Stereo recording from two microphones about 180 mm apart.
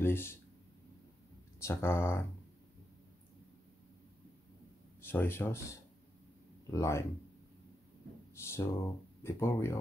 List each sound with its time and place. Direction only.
0.0 s speech: 10° left (ahead or behind)
1.6 s speech: 15° left (ahead or behind)
5.0 s speech: 10° left (ahead or behind)
8.4 s speech: 15° left (ahead or behind)